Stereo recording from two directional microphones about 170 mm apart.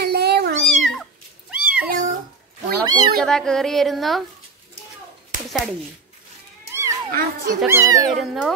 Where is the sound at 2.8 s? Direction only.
25° right (ahead or behind).